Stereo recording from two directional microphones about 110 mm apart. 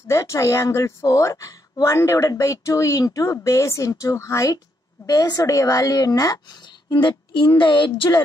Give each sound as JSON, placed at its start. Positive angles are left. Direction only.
{"t": 0.1, "sound": "a woman's voice", "side_deg": 25}
{"t": 5.0, "sound": "speech", "side_deg": 35}